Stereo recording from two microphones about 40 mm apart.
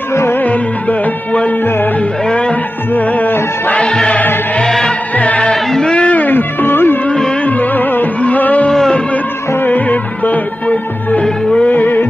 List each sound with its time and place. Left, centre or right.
0.5 s music: left
2.9 s music: left
4.6 s music: centre
5.1 s music: left
5.5 s a sound: centre
5.9 s music: left
6.2 s music: left
7.4 s music: left
8.2 s a sound: left
8.6 s a sound: centre
9.7 s music: left
11.2 s music: left
11.7 s music: left